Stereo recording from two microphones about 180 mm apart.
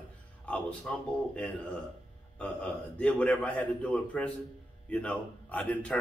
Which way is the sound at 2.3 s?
5° left (ahead or behind).